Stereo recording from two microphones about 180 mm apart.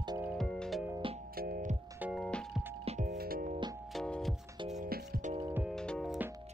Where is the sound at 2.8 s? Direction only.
45° right (ahead or behind).